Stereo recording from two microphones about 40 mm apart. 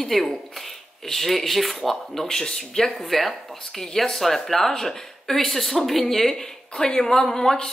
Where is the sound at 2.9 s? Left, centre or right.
Centre.